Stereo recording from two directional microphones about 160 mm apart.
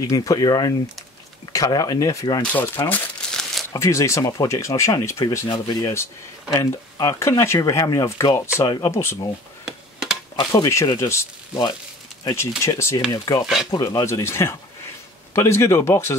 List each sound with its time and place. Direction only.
0.0 s speech: 20° left (ahead or behind)
2.4 s speech: 10° left (ahead or behind)
2.9 s crumpling: 5° left (ahead or behind)
3.7 s speech: 20° left (ahead or behind)
10.3 s speech: 25° left (ahead or behind)